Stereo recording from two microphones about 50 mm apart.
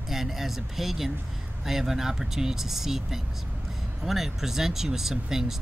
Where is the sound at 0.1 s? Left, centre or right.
Centre.